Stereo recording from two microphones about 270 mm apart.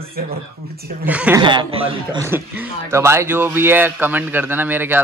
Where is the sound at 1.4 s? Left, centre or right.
Centre.